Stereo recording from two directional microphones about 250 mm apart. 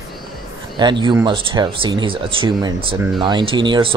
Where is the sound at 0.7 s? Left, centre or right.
Centre.